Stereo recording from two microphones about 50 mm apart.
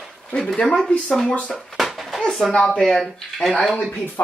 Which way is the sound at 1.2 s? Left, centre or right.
Left.